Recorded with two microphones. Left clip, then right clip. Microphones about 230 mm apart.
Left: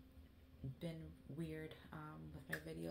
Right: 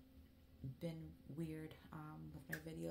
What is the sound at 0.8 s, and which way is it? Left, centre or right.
Speech, right.